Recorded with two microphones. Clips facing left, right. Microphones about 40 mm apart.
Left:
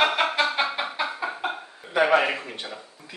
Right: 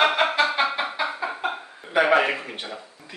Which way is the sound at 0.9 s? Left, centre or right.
Centre.